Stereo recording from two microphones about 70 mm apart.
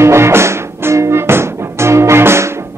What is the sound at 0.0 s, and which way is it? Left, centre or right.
Music, right.